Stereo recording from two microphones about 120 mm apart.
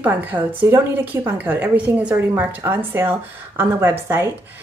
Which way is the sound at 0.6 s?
25° right (ahead or behind).